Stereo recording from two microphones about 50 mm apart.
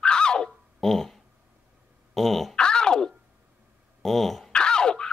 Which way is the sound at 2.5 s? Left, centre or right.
Centre.